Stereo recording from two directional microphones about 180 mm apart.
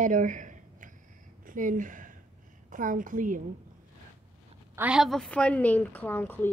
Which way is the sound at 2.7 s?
45° right (ahead or behind).